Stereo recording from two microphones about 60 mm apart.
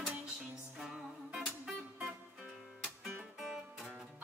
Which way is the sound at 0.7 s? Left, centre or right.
Centre.